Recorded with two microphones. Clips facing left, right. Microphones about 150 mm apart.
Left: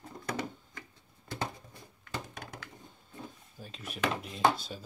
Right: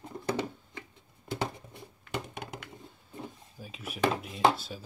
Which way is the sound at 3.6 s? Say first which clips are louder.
Right 2 dB; 5° right (ahead or behind).